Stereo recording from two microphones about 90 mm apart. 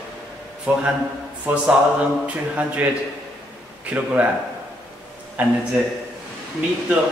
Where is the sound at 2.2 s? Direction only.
15° right (ahead or behind).